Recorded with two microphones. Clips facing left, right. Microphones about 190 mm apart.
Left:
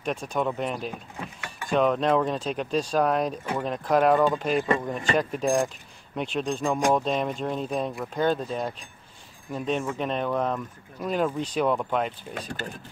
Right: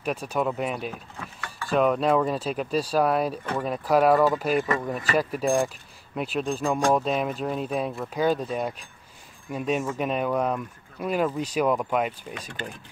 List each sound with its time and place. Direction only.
0.0 s speech: 5° right (ahead or behind)
1.2 s a sound: 20° left (ahead or behind)
1.7 s speech: 5° right (ahead or behind)
4.6 s speech: 30° left (ahead or behind)
5.1 s speech: 5° right (ahead or behind)
12.4 s speech: 40° left (ahead or behind)